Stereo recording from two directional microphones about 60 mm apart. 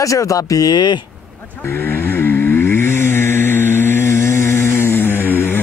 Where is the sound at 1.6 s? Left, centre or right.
Left.